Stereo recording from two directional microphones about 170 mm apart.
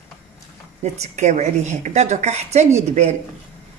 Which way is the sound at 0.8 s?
40° right (ahead or behind).